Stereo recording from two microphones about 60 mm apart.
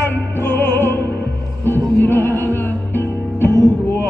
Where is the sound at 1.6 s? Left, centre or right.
Left.